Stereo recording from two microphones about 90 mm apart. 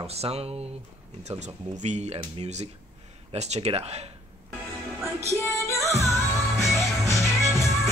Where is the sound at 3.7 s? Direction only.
90° right.